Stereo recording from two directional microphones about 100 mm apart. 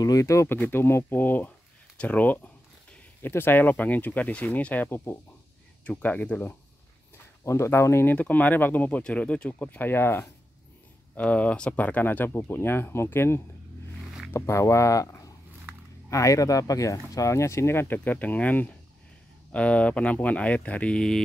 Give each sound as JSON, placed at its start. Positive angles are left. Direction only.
{"t": 0.0, "sound": "speech", "side_deg": 35}
{"t": 5.9, "sound": "speech", "side_deg": 15}
{"t": 7.4, "sound": "speech", "side_deg": 30}
{"t": 11.1, "sound": "speech", "side_deg": 15}